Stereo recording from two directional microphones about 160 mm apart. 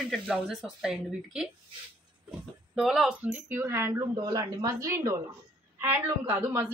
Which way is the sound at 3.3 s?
15° right (ahead or behind).